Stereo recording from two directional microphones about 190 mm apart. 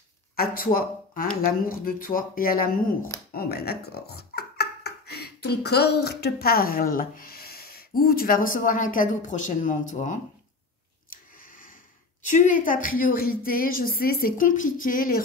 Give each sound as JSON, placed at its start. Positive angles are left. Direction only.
{"t": 0.4, "sound": "a woman's voice", "side_deg": 50}
{"t": 12.3, "sound": "a woman's voice", "side_deg": 40}